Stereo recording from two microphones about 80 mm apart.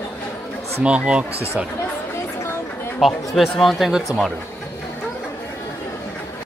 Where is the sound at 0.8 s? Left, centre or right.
Centre.